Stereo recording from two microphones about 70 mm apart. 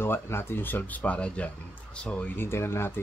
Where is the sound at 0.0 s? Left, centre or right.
Left.